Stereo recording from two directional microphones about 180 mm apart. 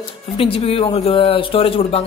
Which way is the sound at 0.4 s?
30° left (ahead or behind).